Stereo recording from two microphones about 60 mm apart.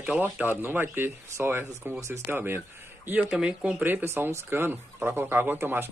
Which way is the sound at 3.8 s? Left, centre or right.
Right.